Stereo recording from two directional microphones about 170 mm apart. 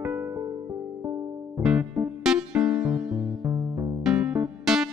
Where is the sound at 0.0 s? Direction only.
10° right (ahead or behind).